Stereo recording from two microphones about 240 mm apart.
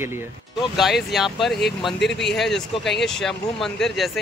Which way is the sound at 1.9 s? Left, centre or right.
Left.